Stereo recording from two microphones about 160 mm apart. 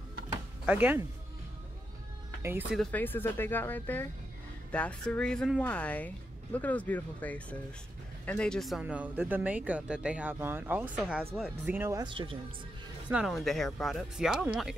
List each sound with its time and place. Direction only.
0.7 s speech: 10° right (ahead or behind)
2.7 s speech: 5° left (ahead or behind); by 10.9 s 15° right (ahead or behind)
11.0 s speech: centre (ahead or behind)
11.6 s speech: 15° right (ahead or behind)
12.0 s speech: 30° right (ahead or behind)
13.1 s speech: centre (ahead or behind)